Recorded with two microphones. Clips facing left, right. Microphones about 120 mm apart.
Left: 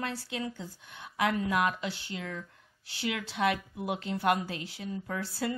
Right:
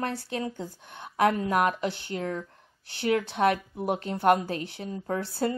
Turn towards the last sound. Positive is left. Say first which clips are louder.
# right 4 dB
turn(degrees=-30)  # may be behind; listen again after turning